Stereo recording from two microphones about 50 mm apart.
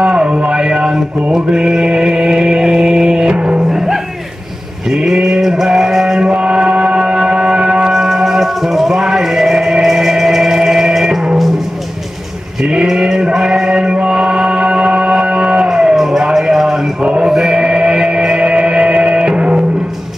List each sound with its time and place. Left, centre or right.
0.0 s a sound: centre
1.3 s chant: centre
3.6 s music: centre
4.8 s a sound: centre
6.4 s music: centre
7.9 s music: centre
12.6 s sheep: centre
13.3 s music: centre
17.0 s music: centre